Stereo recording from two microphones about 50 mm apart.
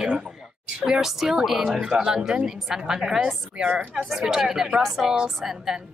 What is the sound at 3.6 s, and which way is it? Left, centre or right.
Speech, right.